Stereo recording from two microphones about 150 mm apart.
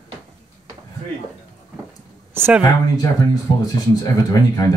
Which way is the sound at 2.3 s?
15° right (ahead or behind).